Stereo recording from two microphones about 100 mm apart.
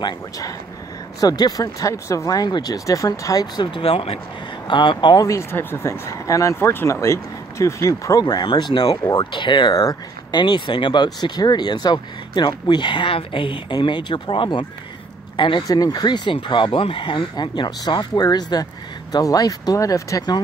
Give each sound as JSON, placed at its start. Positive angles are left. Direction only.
{"t": 0.0, "sound": "speech", "side_deg": 35}
{"t": 3.7, "sound": "speech", "side_deg": 70}
{"t": 4.6, "sound": "speech", "side_deg": 50}
{"t": 5.2, "sound": "speech", "side_deg": 30}
{"t": 9.8, "sound": "speech", "side_deg": 35}
{"t": 10.4, "sound": "speech", "side_deg": 55}
{"t": 15.6, "sound": "speech", "side_deg": 40}